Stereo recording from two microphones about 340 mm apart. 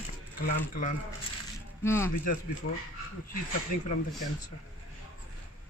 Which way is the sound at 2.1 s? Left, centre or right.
Left.